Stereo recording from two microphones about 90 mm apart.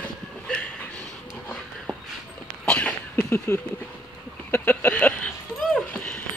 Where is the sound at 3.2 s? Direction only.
30° left (ahead or behind).